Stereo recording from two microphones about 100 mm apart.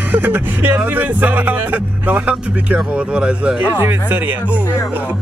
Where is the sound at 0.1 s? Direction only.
20° right (ahead or behind).